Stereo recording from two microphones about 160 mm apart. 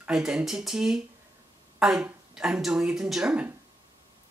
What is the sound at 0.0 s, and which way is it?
Speech, 5° right (ahead or behind).